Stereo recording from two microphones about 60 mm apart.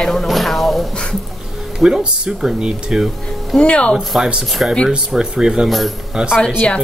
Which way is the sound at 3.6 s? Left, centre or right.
Centre.